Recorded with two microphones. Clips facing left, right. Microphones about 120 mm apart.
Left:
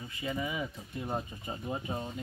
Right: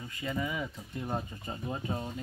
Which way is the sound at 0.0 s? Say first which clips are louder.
Right 1 dB; 20° left (ahead or behind).